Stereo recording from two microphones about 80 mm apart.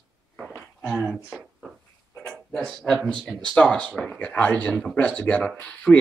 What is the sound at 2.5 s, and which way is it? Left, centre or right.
Speech, centre.